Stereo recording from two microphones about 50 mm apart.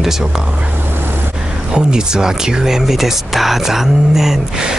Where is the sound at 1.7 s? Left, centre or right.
Centre.